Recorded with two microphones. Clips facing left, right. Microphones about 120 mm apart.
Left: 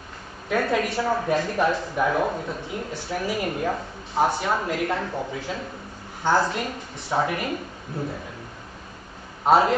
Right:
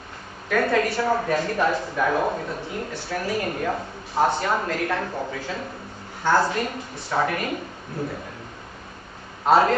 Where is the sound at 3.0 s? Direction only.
15° left (ahead or behind).